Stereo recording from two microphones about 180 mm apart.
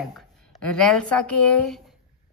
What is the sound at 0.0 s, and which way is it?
A woman's voice, 5° left (ahead or behind).